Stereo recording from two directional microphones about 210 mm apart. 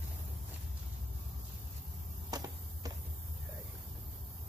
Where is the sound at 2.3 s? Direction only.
15° right (ahead or behind).